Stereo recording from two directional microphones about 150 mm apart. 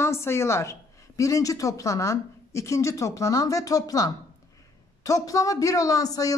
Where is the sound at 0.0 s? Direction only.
20° left (ahead or behind).